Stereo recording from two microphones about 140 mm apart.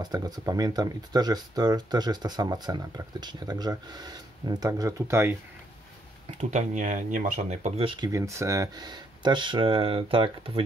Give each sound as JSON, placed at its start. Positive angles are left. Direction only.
{"t": 0.0, "sound": "speech", "side_deg": -25}
{"t": 6.5, "sound": "speech", "side_deg": -60}
{"t": 7.8, "sound": "speech", "side_deg": -35}
{"t": 8.1, "sound": "speech", "side_deg": -20}